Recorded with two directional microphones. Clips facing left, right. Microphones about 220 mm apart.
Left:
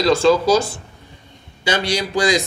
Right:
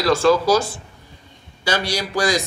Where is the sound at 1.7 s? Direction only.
20° left (ahead or behind).